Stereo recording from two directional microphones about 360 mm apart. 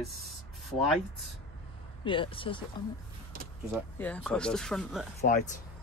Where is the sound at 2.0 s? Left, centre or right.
Centre.